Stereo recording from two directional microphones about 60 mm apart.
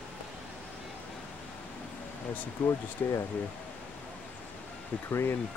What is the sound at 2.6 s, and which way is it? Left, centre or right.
Speech, left.